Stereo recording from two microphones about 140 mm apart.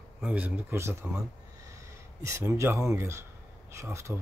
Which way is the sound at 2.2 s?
20° right (ahead or behind).